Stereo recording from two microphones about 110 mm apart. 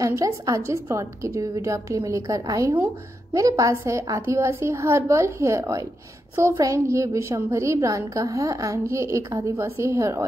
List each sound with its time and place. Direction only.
0.0 s a woman's voice: 30° right (ahead or behind)